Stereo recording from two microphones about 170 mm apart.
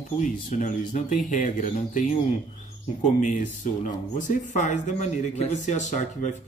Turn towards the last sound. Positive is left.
turn(degrees=45)  # may be behind; listen again after turning